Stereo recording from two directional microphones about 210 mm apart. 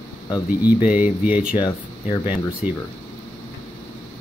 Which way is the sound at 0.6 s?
10° right (ahead or behind).